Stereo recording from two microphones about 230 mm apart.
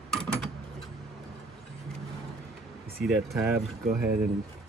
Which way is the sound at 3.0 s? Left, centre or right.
Centre.